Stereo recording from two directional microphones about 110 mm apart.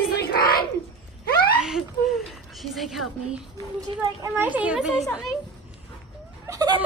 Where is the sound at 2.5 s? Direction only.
Centre (ahead or behind).